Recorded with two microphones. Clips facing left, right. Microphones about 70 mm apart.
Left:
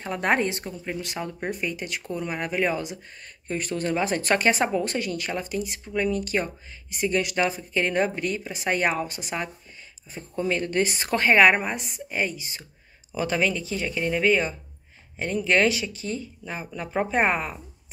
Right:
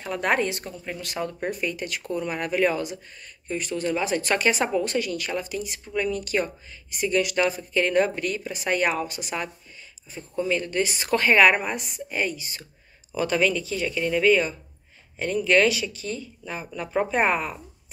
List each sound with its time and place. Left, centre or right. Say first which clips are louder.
0.0 s speech: even; left
3.4 s speech: even; left